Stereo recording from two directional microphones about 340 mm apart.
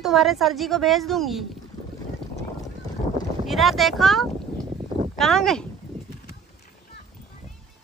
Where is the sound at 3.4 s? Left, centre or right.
Centre.